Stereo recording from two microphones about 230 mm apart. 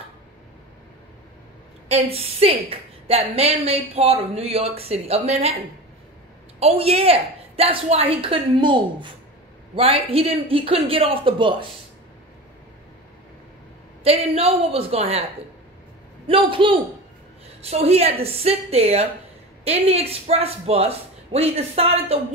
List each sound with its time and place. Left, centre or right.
1.9 s a woman's voice: right
6.6 s a woman's voice: right
14.0 s a woman's voice: right
16.3 s a woman's voice: right